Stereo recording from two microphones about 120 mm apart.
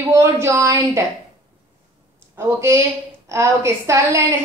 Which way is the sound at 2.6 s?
25° right (ahead or behind).